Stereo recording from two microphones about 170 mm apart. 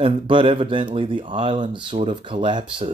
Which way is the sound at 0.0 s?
30° right (ahead or behind).